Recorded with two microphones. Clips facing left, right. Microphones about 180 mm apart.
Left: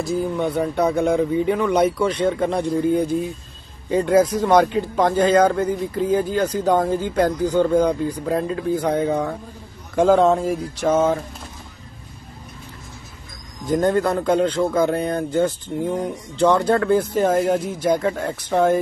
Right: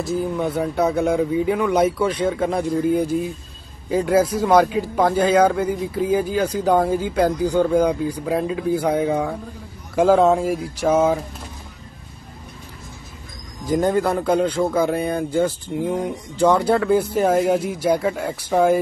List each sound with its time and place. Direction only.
0.0 s a man's voice: centre (ahead or behind)
13.7 s a man's voice: 5° right (ahead or behind)